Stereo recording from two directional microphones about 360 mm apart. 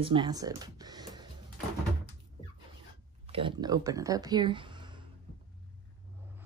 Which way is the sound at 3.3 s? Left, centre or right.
Centre.